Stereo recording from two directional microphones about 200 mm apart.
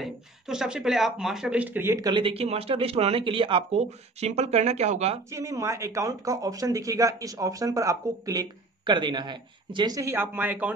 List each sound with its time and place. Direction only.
0.0 s speech: 5° right (ahead or behind); by 5.2 s 35° right (ahead or behind)
5.3 s speech: 15° right (ahead or behind)